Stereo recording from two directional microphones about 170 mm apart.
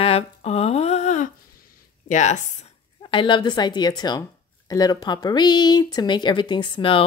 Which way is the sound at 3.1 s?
30° left (ahead or behind).